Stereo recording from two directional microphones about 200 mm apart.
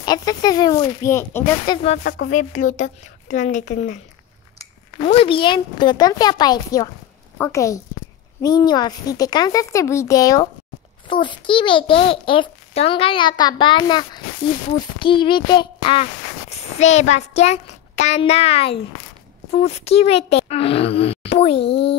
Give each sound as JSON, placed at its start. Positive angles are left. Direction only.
{"t": 0.0, "sound": "a child's voice", "side_deg": 20}
{"t": 2.2, "sound": "speech", "side_deg": 40}
{"t": 5.0, "sound": "a child's voice", "side_deg": 25}